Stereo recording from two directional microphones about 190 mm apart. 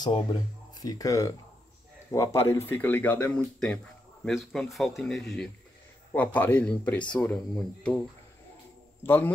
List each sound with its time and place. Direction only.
0.0 s speech: 25° left (ahead or behind); by 8.0 s 5° left (ahead or behind)
9.0 s speech: 10° left (ahead or behind)